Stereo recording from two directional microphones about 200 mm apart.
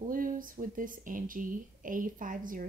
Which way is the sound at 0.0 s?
40° right (ahead or behind).